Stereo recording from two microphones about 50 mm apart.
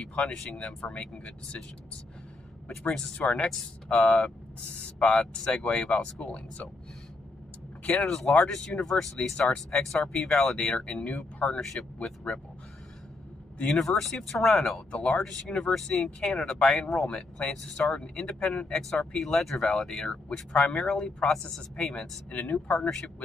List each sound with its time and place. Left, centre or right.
0.2 s speech: centre
1.1 s speech: left
2.9 s speech: centre
3.2 s speech: left
7.9 s speech: centre
11.1 s speech: left
11.6 s speech: centre
13.7 s speech: centre
14.9 s speech: left
15.2 s speech: centre
17.5 s speech: centre
20.1 s speech: centre
20.6 s speech: centre
22.3 s speech: left